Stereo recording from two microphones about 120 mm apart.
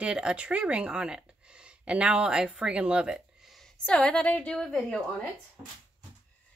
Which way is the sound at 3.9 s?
10° left (ahead or behind).